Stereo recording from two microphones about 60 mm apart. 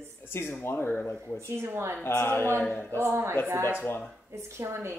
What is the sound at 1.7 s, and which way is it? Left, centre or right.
Speech, right.